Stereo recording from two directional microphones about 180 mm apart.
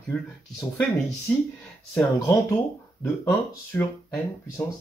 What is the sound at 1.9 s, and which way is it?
Speech, 15° left (ahead or behind).